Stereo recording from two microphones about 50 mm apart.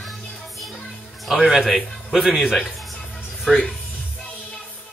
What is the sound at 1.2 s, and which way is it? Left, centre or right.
Speech, centre.